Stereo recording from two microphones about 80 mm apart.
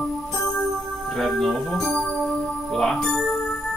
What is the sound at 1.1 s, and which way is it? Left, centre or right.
Speech, centre.